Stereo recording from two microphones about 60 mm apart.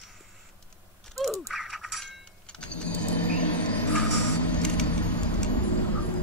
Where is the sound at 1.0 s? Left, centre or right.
Centre.